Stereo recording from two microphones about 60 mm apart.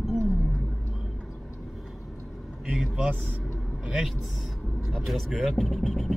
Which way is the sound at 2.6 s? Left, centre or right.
Centre.